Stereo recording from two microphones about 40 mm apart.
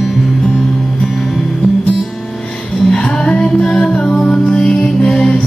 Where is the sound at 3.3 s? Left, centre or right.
Left.